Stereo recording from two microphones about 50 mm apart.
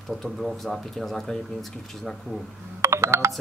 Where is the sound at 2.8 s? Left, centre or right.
Right.